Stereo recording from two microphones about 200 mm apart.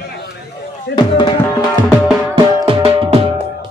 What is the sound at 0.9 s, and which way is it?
Speech, 20° left (ahead or behind).